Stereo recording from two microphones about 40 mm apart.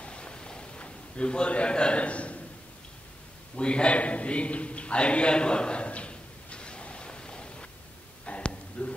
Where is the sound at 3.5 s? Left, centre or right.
Left.